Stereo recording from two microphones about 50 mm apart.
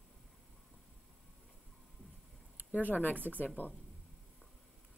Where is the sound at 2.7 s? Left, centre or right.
Left.